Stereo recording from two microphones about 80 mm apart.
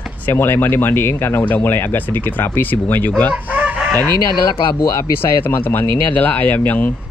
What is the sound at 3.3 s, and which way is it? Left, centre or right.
Chicken, centre.